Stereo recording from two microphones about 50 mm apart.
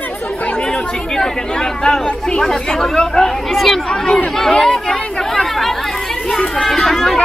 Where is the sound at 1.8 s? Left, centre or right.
Centre.